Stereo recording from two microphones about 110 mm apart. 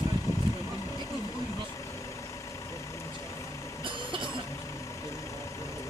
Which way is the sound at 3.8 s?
50° right (ahead or behind).